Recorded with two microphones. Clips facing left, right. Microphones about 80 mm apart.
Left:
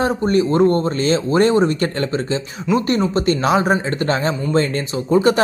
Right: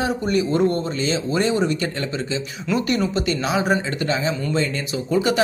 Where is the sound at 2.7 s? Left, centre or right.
Centre.